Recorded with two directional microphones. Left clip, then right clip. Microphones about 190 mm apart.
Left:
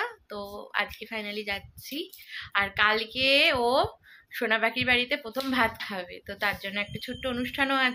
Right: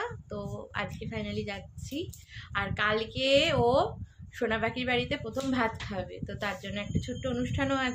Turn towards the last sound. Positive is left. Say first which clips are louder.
# left 5 dB
turn(degrees=0)  # may be behind; listen again after turning